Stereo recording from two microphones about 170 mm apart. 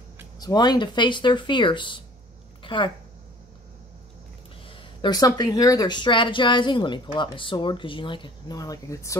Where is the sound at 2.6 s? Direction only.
30° left (ahead or behind).